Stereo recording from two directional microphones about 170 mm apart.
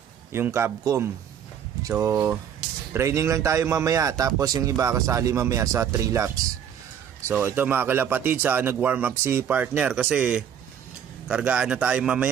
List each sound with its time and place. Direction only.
0.3 s a man's voice: 15° right (ahead or behind)